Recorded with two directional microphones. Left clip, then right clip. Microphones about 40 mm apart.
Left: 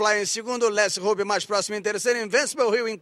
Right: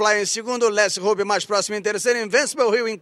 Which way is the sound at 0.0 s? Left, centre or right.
Left.